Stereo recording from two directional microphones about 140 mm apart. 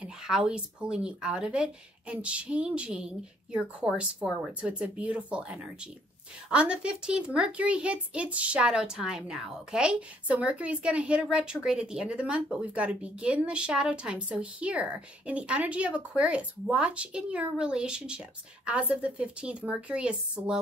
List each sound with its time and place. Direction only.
0.0 s speech: 5° right (ahead or behind)